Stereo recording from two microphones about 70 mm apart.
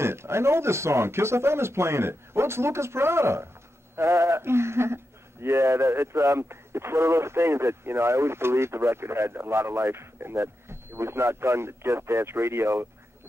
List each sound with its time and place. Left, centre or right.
0.0 s speech: right